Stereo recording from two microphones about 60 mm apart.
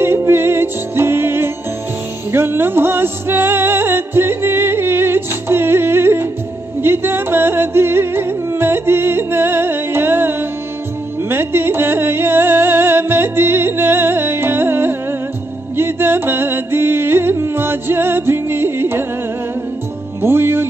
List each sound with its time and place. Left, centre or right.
0.0 s music: right
20.2 s music: right